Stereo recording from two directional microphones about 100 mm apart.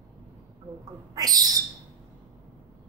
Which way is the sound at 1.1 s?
40° right (ahead or behind).